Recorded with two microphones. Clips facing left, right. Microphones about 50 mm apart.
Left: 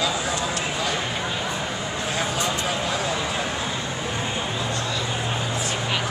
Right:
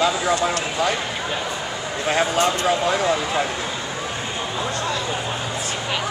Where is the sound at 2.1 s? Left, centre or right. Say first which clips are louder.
Right 8 dB; right.